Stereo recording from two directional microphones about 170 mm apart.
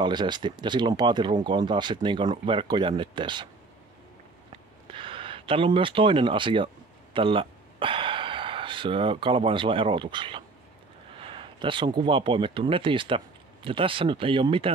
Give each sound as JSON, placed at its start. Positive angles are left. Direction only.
{"t": 0.0, "sound": "speech", "side_deg": -25}
{"t": 4.8, "sound": "speech", "side_deg": -30}